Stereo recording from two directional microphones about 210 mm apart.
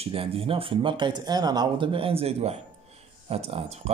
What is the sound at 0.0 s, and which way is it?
A man's voice, 25° right (ahead or behind).